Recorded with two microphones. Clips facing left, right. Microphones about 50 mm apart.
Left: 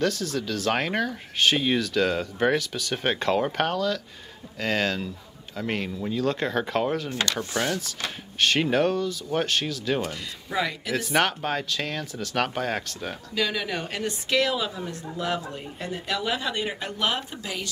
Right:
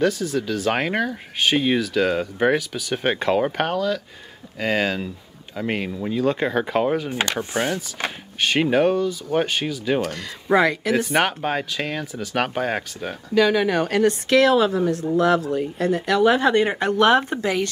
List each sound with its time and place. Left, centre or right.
0.0 s speech: centre
10.0 s a woman's voice: right
11.0 s speech: centre
13.3 s a woman's voice: right